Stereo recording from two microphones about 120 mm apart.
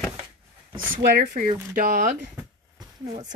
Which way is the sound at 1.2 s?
90° right.